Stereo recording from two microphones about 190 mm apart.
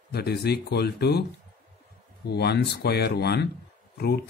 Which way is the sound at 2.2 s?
60° left (ahead or behind).